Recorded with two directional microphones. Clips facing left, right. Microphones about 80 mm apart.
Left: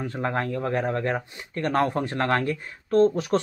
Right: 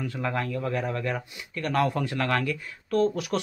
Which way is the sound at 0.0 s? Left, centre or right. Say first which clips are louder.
Left 2 dB; left.